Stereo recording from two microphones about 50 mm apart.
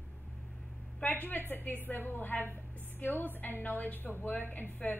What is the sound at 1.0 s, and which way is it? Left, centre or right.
Speech, left.